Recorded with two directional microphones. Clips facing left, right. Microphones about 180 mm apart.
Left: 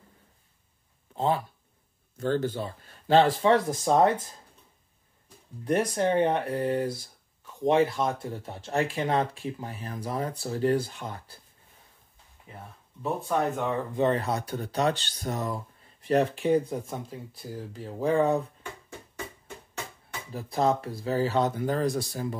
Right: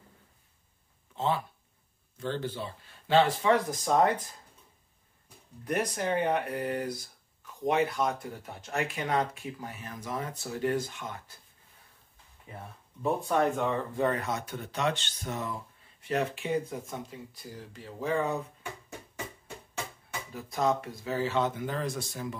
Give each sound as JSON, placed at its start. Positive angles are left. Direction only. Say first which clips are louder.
{"t": 1.1, "sound": "a sound", "louder": "left 3 dB", "side_deg": 40}
{"t": 2.1, "sound": "speech", "louder": "left 6 dB", "side_deg": 45}
{"t": 3.8, "sound": "speech", "louder": "left 3 dB", "side_deg": 25}
{"t": 5.7, "sound": "speech", "louder": "left 5 dB", "side_deg": 30}
{"t": 13.0, "sound": "speech", "louder": "right 1 dB", "side_deg": 5}
{"t": 13.9, "sound": "speech", "louder": "left 4 dB", "side_deg": 30}
{"t": 18.6, "sound": "music", "louder": "even", "side_deg": -10}
{"t": 20.3, "sound": "speech", "louder": "left 3 dB", "side_deg": 35}